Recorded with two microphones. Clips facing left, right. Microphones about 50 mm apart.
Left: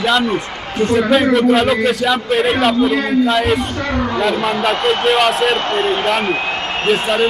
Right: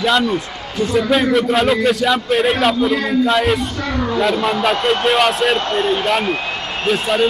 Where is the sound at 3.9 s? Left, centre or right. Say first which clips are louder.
Even; centre.